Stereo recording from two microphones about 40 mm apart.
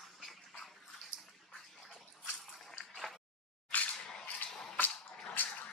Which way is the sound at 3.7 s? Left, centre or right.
Left.